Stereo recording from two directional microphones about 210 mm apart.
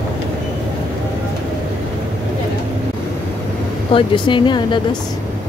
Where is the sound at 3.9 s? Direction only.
20° left (ahead or behind).